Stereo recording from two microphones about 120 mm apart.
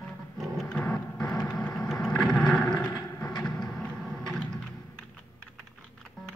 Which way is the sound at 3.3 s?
35° left (ahead or behind).